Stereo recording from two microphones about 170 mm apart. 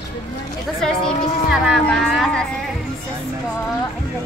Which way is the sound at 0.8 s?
Centre (ahead or behind).